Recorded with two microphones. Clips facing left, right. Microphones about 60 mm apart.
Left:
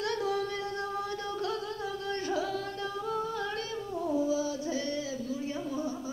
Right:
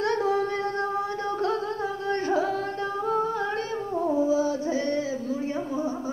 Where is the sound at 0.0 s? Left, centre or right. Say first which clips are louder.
Right 7 dB; right.